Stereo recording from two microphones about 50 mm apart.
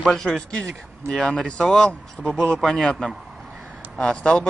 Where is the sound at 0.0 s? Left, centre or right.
Centre.